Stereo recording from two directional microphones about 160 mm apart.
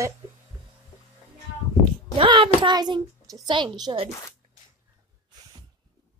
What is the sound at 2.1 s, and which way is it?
A child's voice, 30° right (ahead or behind).